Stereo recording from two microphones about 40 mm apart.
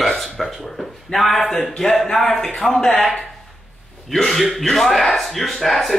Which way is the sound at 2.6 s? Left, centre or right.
Left.